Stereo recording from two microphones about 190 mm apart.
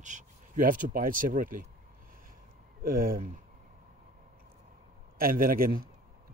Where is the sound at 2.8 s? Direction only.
50° right (ahead or behind).